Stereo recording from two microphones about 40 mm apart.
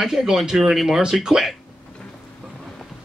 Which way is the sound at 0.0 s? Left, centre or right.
Centre.